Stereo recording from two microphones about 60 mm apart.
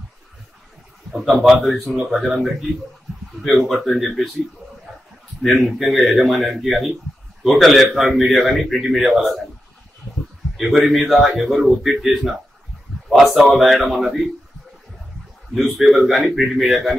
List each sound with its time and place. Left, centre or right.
1.1 s a man's voice: centre
5.4 s a man's voice: centre
10.6 s a man's voice: centre
15.5 s a man's voice: centre